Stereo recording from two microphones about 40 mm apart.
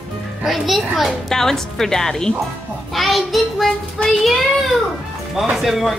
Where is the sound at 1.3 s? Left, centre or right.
Centre.